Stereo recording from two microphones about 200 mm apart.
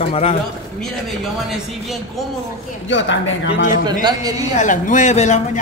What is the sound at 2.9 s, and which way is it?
Speech, 65° left (ahead or behind).